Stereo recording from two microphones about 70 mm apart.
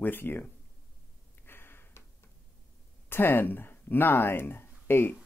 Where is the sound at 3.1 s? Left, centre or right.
Left.